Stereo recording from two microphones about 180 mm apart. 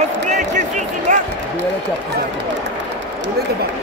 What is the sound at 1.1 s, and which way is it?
Basketball bounce, 45° right (ahead or behind).